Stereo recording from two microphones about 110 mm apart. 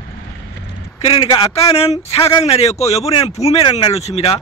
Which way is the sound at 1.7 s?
70° left (ahead or behind).